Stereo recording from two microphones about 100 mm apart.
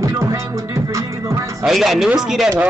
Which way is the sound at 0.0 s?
30° right (ahead or behind).